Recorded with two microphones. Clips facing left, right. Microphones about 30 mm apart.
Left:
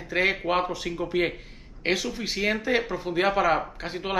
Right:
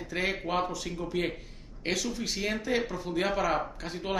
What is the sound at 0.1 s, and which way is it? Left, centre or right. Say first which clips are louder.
Speech: left 7 dB; left.